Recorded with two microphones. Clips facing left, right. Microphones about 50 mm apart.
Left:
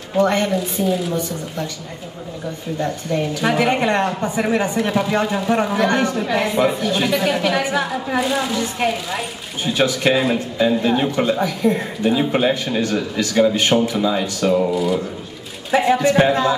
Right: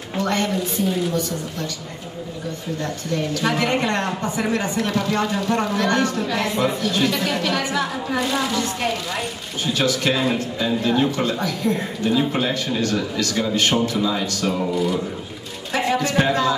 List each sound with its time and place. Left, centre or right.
0.2 s speech: centre
0.8 s speech: centre
2.8 s speech: centre
15.7 s a man's voice: centre